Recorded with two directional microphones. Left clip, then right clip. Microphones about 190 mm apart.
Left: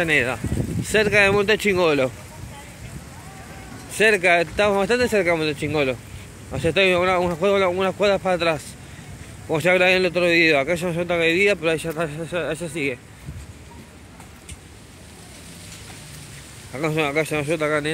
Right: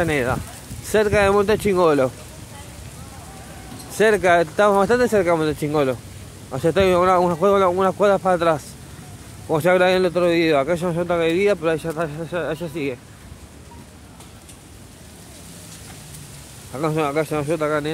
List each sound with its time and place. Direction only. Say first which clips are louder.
0.0 s a man's voice: left 1 dB; 10° right (ahead or behind)
3.9 s a man's voice: right 1 dB; 20° right (ahead or behind); by 13.0 s 5° right (ahead or behind)
16.7 s speech: right 1 dB; 5° right (ahead or behind)